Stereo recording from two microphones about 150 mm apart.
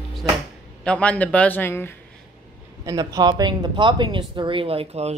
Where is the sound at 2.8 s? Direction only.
25° right (ahead or behind); by 5.1 s 40° right (ahead or behind).